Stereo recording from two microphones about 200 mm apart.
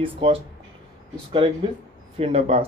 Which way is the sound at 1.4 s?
25° right (ahead or behind).